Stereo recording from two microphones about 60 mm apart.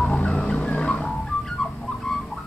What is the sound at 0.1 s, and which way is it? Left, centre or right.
Fowl, centre.